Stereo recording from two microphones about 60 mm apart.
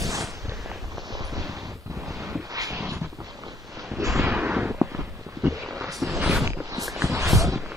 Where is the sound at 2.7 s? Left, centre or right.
Right.